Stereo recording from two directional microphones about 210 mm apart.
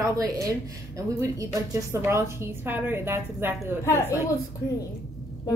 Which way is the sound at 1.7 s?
10° right (ahead or behind).